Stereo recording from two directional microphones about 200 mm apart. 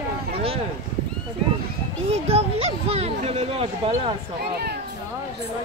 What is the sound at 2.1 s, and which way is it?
Speech, 30° right (ahead or behind).